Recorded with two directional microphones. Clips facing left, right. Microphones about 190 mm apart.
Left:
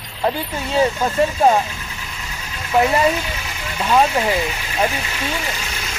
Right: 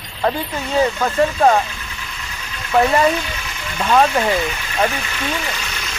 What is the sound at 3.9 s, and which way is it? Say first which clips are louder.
Speech: right 1 dB; 15° left (ahead or behind).